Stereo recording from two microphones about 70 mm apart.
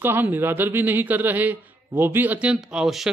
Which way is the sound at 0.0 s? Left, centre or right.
Right.